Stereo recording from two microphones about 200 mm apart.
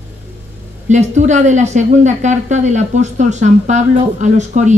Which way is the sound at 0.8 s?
35° right (ahead or behind).